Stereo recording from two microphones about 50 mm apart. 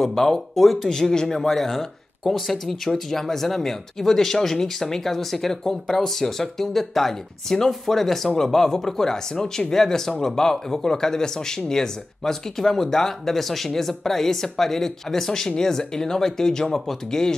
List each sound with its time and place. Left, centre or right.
0.0 s speech: centre